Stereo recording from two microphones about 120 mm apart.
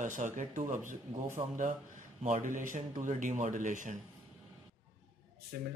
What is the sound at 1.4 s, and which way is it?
Speech, 45° right (ahead or behind).